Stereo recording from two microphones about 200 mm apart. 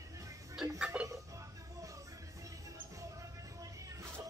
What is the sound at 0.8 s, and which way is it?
Music, 5° right (ahead or behind).